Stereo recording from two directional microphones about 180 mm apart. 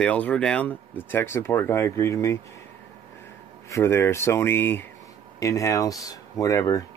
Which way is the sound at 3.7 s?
15° left (ahead or behind).